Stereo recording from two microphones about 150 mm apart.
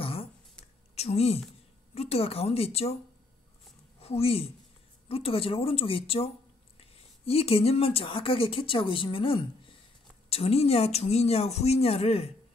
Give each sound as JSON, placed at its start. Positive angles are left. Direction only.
{"t": 0.0, "sound": "throat clearing", "side_deg": 40}
{"t": 0.9, "sound": "a woman's voice", "side_deg": 45}
{"t": 4.0, "sound": "a woman's voice", "side_deg": 40}